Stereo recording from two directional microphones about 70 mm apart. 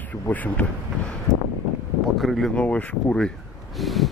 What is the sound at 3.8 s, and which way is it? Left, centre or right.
Speech, centre.